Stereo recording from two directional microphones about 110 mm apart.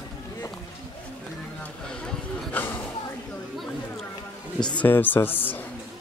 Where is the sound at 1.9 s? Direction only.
5° left (ahead or behind).